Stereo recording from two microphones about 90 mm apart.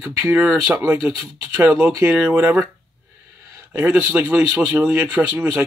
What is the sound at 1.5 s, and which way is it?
Speech, 20° right (ahead or behind).